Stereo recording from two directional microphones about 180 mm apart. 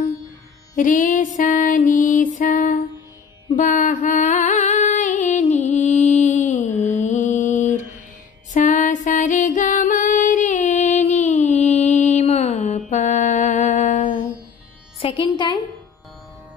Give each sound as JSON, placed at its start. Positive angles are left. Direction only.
{"t": 0.7, "sound": "music", "side_deg": 45}
{"t": 15.0, "sound": "a woman's voice", "side_deg": 30}